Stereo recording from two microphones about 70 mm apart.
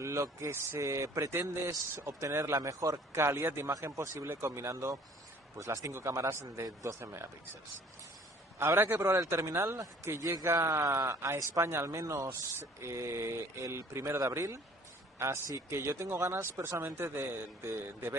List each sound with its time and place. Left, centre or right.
0.0 s a man's voice: right
3.2 s a man's voice: right
8.5 s a man's voice: right
9.1 s a man's voice: right